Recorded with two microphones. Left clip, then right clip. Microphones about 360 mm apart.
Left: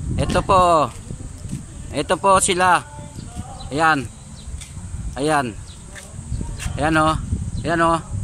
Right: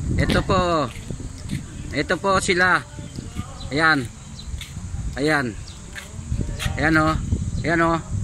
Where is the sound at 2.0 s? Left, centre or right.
Centre.